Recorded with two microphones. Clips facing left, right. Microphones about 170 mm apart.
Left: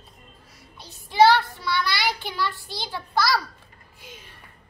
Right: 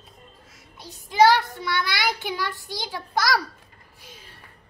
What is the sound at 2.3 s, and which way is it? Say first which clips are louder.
A child's voice: even; 15° right (ahead or behind).